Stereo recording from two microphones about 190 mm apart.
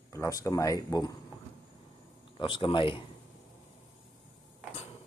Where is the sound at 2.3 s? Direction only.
25° left (ahead or behind).